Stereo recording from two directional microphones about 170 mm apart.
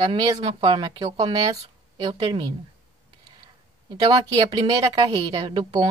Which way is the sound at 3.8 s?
25° right (ahead or behind).